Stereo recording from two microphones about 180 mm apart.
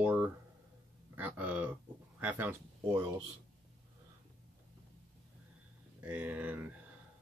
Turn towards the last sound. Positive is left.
turn(degrees=-10)  # may be behind; listen again after turning